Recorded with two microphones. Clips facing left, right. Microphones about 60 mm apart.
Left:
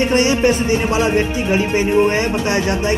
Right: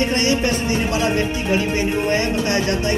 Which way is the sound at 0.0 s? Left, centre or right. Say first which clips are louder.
Left 4 dB; left.